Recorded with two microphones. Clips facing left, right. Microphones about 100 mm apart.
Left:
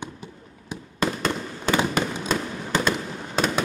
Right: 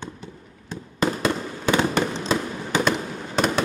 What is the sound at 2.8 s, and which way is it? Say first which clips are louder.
Fireworks: right 2 dB; centre (ahead or behind).